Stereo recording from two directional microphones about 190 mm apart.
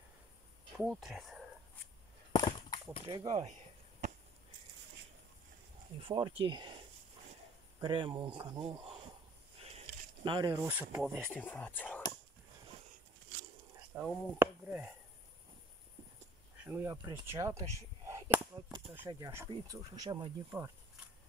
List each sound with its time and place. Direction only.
0.7 s speech: centre (ahead or behind)
2.3 s a sound: 25° left (ahead or behind)
3.1 s speech: 20° right (ahead or behind)
6.0 s speech: 25° right (ahead or behind)
7.8 s speech: 25° right (ahead or behind)
10.2 s speech: 25° right (ahead or behind)
10.7 s speech: 10° right (ahead or behind)
11.1 s speech: 5° left (ahead or behind)
13.7 s speech: 10° right (ahead or behind)
16.6 s speech: 10° right (ahead or behind)